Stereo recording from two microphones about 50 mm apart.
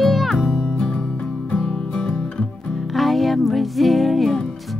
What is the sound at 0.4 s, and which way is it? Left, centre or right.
Music, centre.